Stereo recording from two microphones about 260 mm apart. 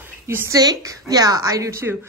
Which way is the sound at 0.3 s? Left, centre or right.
Centre.